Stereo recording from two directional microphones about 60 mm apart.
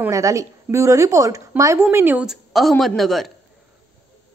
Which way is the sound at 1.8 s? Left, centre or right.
Right.